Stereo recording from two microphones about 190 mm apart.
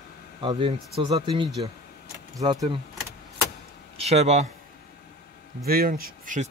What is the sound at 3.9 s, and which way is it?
Speech, 35° right (ahead or behind).